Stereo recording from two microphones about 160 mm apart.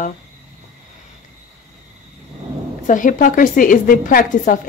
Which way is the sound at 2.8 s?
55° left (ahead or behind).